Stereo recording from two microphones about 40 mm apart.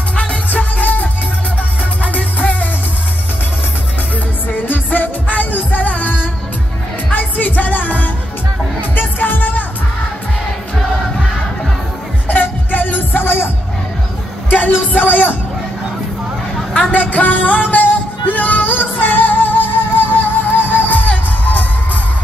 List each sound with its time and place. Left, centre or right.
0.1 s music: left
0.5 s music: left
2.1 s music: left
4.5 s music: left
12.3 s music: left
14.5 s music: left
16.8 s a sound: left
17.6 s music: left